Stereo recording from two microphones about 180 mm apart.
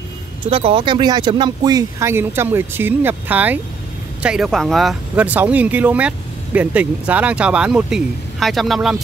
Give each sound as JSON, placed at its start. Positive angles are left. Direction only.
{"t": 0.5, "sound": "speech", "side_deg": -30}